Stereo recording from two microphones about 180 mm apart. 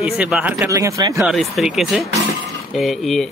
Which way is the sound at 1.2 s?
Centre (ahead or behind).